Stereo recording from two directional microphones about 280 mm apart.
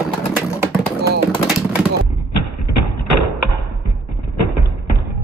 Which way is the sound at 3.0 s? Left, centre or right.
Left.